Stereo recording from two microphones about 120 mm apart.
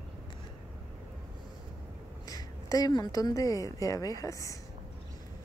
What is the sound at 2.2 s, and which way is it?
A woman's voice, 30° left (ahead or behind).